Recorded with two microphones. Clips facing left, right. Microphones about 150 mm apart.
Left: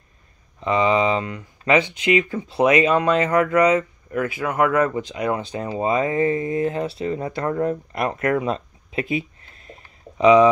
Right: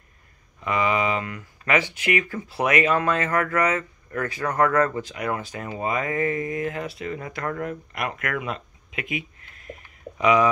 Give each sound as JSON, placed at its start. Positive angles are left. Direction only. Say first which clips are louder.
{"t": 0.6, "sound": "speech", "louder": "left 5 dB", "side_deg": 25}